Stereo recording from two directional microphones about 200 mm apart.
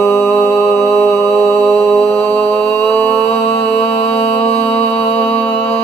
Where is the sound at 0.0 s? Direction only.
10° left (ahead or behind).